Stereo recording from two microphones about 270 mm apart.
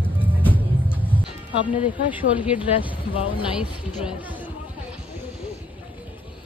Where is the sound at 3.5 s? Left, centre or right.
Centre.